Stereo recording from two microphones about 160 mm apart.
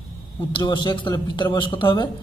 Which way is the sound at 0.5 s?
30° left (ahead or behind).